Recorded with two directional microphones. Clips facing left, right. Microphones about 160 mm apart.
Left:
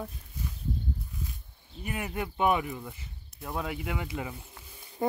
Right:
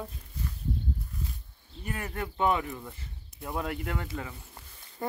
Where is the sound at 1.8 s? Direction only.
10° left (ahead or behind).